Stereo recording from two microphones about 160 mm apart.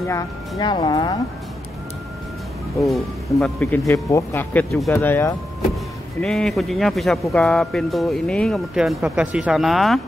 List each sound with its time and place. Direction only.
0.0 s speech: 20° left (ahead or behind)
2.8 s speech: centre (ahead or behind)
6.2 s speech: 5° left (ahead or behind)